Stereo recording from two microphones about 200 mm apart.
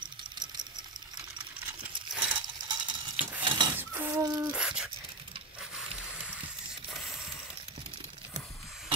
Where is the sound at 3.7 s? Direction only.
10° right (ahead or behind).